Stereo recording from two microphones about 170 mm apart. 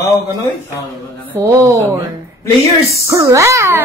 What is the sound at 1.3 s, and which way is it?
Speech, 15° right (ahead or behind).